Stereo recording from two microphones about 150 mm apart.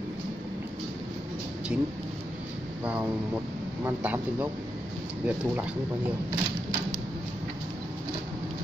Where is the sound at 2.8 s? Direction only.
10° right (ahead or behind).